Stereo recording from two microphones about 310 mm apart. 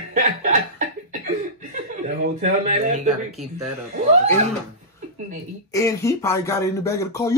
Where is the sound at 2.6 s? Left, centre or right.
Right.